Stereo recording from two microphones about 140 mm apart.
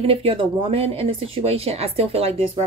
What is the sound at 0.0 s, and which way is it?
Speech, 40° right (ahead or behind).